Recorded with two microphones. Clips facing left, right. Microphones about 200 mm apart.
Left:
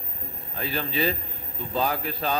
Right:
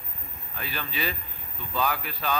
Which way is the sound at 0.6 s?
30° left (ahead or behind).